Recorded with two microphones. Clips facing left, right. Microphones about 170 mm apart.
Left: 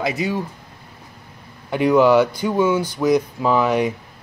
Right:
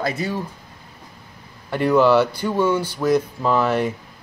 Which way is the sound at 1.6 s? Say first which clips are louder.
Left 1 dB; 10° left (ahead or behind).